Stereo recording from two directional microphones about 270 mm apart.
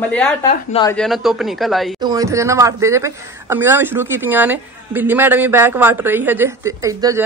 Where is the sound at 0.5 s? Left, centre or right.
Centre.